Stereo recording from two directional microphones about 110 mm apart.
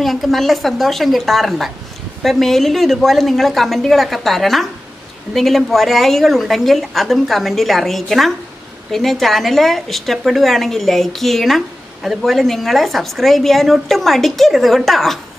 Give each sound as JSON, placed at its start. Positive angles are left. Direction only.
{"t": 0.0, "sound": "a woman's voice", "side_deg": 0}